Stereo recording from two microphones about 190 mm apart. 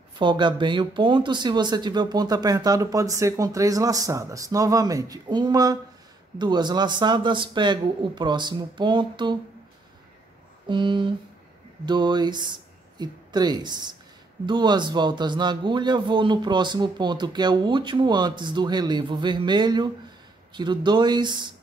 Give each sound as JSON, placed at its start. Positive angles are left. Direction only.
{"t": 0.2, "sound": "speech", "side_deg": -25}
{"t": 10.7, "sound": "speech", "side_deg": -25}